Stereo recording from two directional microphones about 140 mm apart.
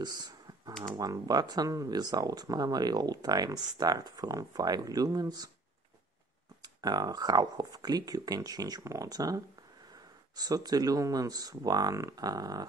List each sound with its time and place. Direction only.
0.0 s computer keyboard: 30° right (ahead or behind)
0.9 s speech: 25° right (ahead or behind)
6.6 s speech: 30° right (ahead or behind)